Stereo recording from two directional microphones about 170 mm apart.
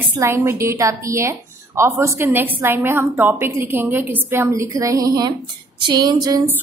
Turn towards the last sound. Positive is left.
turn(degrees=-20)  # may be behind; listen again after turning